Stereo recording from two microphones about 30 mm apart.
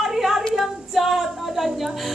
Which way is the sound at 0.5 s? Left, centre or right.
Centre.